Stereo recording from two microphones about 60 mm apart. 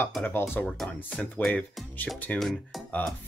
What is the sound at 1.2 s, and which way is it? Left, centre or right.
Speech, centre.